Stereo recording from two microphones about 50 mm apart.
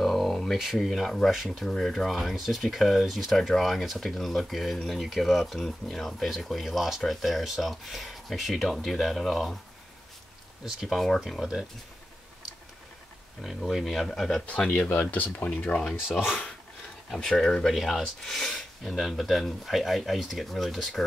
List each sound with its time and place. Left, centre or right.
0.0 s a sound: centre
0.6 s speech: centre
2.1 s speech: centre
5.6 s speech: centre
10.6 s speech: centre
13.4 s speech: centre
14.0 s speech: centre
15.0 s speech: left
15.5 s speech: left
17.3 s speech: centre